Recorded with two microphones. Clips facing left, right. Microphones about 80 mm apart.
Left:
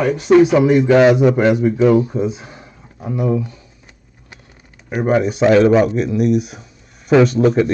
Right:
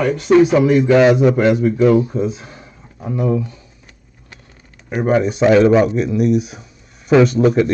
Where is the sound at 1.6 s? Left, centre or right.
Left.